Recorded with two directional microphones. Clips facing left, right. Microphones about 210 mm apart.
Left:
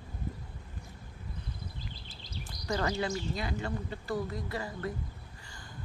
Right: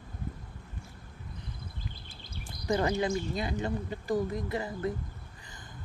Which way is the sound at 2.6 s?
20° right (ahead or behind).